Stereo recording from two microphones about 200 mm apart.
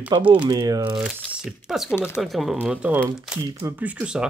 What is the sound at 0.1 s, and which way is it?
Speech, 20° right (ahead or behind).